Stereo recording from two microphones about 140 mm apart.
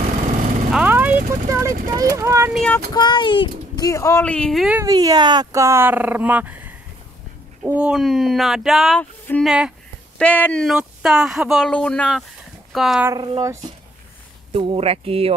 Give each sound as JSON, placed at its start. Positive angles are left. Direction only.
{"t": 0.7, "sound": "vehicle", "side_deg": -10}
{"t": 1.5, "sound": "speech", "side_deg": -25}
{"t": 2.5, "sound": "speech", "side_deg": 5}
{"t": 2.9, "sound": "speech", "side_deg": 30}
{"t": 4.2, "sound": "speech", "side_deg": 10}
{"t": 4.8, "sound": "speech", "side_deg": -25}
{"t": 10.1, "sound": "speech", "side_deg": 10}
{"t": 10.8, "sound": "speech", "side_deg": -5}
{"t": 13.1, "sound": "speech", "side_deg": -30}
{"t": 14.5, "sound": "speech", "side_deg": -40}